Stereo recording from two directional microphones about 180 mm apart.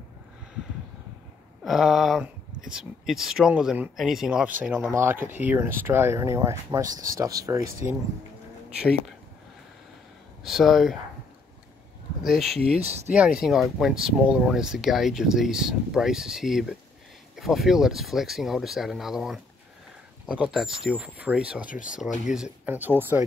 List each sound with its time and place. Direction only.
1.6 s speech: centre (ahead or behind); by 7.9 s 20° right (ahead or behind)
8.6 s a sound: 5° right (ahead or behind)
10.4 s speech: centre (ahead or behind)
12.2 s speech: centre (ahead or behind)
12.5 s speech: 35° right (ahead or behind)
13.1 s speech: 5° right (ahead or behind)
21.6 s speech: 45° left (ahead or behind)
22.2 s speech: 5° right (ahead or behind)